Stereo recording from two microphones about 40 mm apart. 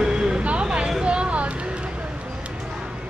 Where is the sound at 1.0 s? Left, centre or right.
Right.